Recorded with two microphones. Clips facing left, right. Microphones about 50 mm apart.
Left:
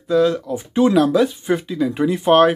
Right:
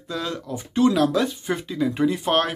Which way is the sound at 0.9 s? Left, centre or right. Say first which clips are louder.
Left 5 dB; centre.